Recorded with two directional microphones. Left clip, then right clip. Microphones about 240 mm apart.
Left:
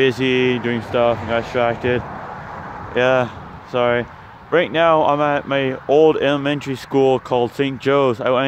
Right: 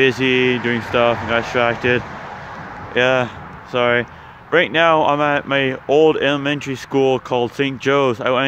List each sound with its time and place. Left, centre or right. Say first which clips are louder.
0.0 s speech: right 1 dB; centre